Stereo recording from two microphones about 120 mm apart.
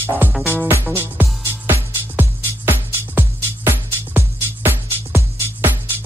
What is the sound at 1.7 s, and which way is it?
Music, 15° right (ahead or behind).